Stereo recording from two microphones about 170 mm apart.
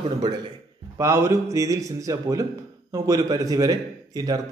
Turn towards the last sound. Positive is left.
turn(degrees=-20)  # may be behind; listen again after turning